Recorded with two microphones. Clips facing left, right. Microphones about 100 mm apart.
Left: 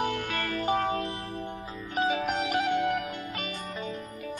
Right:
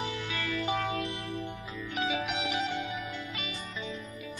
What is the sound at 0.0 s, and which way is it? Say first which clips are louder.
Music: left 5 dB; 55° left (ahead or behind).